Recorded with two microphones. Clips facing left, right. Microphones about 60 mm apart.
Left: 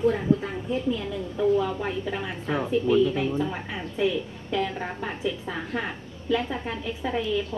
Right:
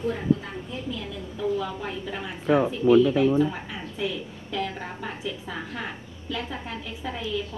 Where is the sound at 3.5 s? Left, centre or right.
Centre.